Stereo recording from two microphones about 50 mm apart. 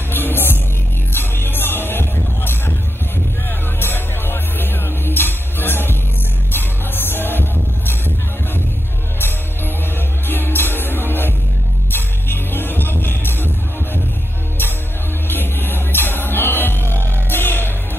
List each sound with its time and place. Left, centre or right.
0.1 s music: left
9.9 s music: left
15.2 s music: left